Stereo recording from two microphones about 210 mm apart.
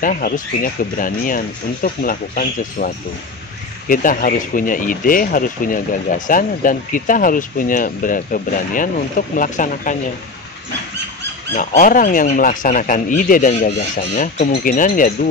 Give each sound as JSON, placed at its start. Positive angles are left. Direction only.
{"t": 0.0, "sound": "speech", "side_deg": 40}
{"t": 3.9, "sound": "speech", "side_deg": 40}
{"t": 11.5, "sound": "speech", "side_deg": 40}